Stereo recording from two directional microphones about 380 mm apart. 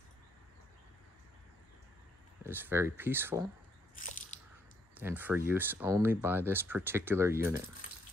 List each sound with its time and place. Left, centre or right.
2.4 s speech: centre
3.9 s biting: left
4.9 s speech: centre